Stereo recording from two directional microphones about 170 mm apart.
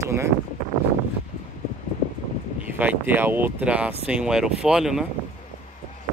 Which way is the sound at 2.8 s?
10° right (ahead or behind).